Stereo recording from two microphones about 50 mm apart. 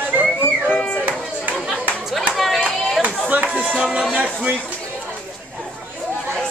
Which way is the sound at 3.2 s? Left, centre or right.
Right.